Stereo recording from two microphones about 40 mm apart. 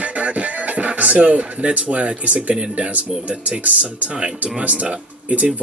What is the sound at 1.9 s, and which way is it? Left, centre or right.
Speech, right.